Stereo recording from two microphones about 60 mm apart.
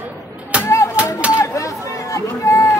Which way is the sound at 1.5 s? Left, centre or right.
Left.